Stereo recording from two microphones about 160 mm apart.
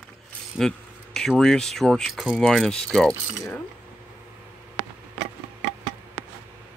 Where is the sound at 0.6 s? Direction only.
5° left (ahead or behind).